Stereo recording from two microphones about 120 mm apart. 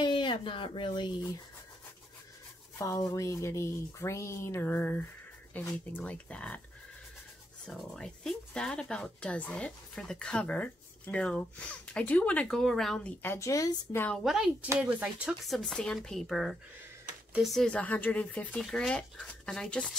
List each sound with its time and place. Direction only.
0.0 s speech: 45° left (ahead or behind)
2.8 s speech: 30° left (ahead or behind); by 6.6 s 10° left (ahead or behind)
7.6 s speech: 5° left (ahead or behind)
13.2 s speech: 20° left (ahead or behind)
14.1 s speech: 5° right (ahead or behind)
15.4 s speech: centre (ahead or behind)